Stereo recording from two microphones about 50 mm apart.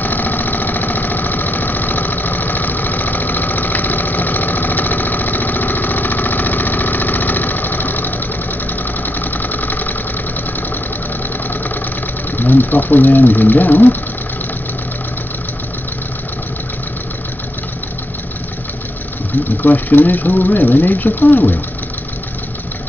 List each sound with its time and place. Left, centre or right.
0.0 s engine: left
12.4 s speech: left
19.6 s speech: left